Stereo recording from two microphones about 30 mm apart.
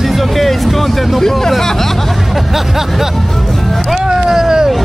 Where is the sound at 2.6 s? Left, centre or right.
Centre.